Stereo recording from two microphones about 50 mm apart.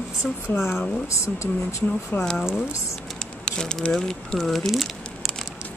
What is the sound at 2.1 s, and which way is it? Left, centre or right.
Speech, left.